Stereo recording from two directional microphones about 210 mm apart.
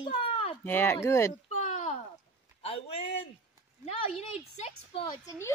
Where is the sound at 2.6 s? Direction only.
30° left (ahead or behind).